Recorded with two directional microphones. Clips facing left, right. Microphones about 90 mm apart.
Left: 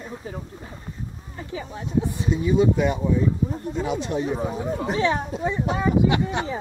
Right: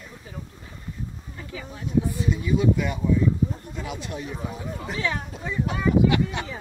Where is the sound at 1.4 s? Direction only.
30° left (ahead or behind).